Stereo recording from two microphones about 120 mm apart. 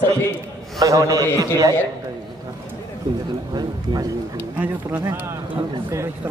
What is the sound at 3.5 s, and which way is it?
Speech, 35° right (ahead or behind).